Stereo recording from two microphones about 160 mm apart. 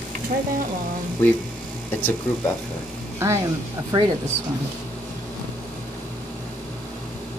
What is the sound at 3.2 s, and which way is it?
Speech, 15° right (ahead or behind).